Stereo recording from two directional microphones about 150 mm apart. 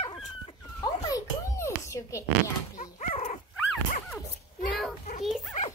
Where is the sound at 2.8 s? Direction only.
45° left (ahead or behind).